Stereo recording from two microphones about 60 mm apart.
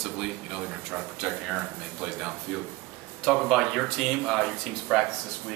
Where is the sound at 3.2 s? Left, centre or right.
Centre.